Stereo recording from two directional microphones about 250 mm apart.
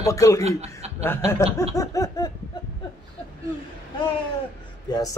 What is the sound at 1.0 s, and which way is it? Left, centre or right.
Speech, centre.